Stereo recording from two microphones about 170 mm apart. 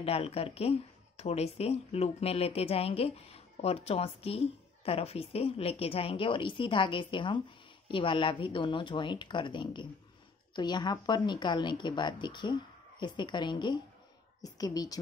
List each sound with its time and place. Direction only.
0.0 s a woman's voice: 35° left (ahead or behind)